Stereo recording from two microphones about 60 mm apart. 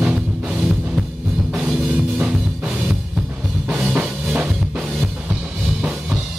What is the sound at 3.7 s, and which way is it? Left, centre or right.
Drum kit, centre.